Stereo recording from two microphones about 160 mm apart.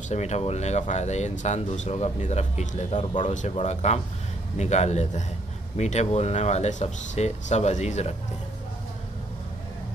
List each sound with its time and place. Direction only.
0.1 s speech: 45° left (ahead or behind)